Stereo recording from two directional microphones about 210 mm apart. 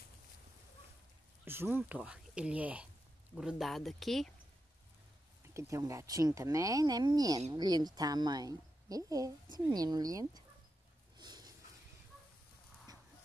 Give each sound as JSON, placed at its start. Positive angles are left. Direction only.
{"t": 1.4, "sound": "speech", "side_deg": -10}
{"t": 5.5, "sound": "a woman's voice", "side_deg": -15}
{"t": 11.1, "sound": "a sound", "side_deg": -20}